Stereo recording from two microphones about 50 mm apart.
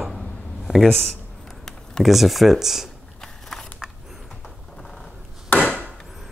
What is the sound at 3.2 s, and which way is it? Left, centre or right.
Biting, centre.